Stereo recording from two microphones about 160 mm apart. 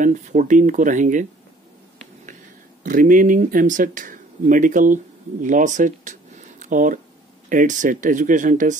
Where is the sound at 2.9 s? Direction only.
55° right (ahead or behind).